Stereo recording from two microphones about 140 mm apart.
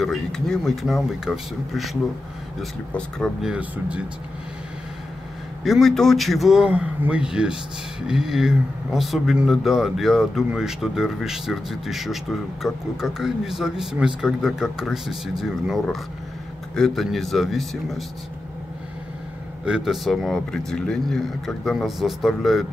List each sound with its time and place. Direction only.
0.0 s speech: 5° left (ahead or behind)
3.4 s speech: 10° right (ahead or behind)
5.6 s speech: centre (ahead or behind)
19.6 s speech: 5° right (ahead or behind)